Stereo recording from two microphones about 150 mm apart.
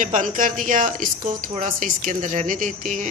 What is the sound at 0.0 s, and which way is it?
Speech, 60° right (ahead or behind).